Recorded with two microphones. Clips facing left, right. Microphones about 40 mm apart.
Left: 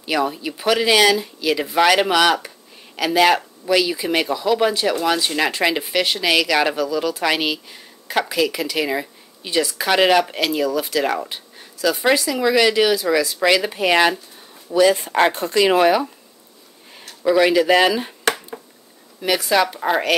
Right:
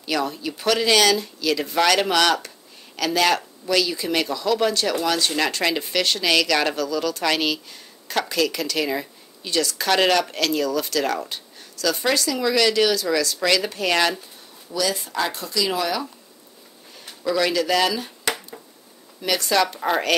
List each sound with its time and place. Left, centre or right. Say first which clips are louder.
0.0 s speech: left 3 dB; centre
14.7 s speech: left 9 dB; left
17.2 s speech: left 6 dB; left
19.2 s speech: left 3 dB; centre